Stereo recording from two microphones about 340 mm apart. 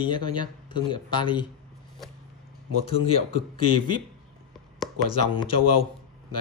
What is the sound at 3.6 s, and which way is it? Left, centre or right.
Speech, left.